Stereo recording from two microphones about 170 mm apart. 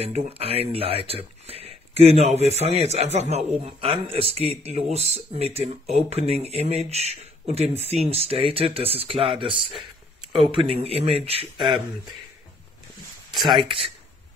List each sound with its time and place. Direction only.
0.0 s speech: 35° right (ahead or behind)
13.6 s speech: 30° right (ahead or behind)